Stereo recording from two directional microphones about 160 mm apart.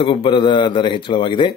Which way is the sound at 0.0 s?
30° left (ahead or behind).